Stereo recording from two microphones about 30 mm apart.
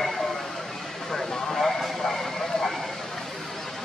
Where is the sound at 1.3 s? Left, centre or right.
Centre.